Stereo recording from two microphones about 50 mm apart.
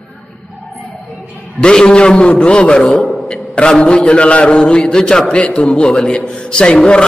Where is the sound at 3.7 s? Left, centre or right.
Centre.